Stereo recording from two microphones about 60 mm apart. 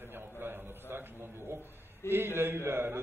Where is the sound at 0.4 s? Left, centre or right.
Right.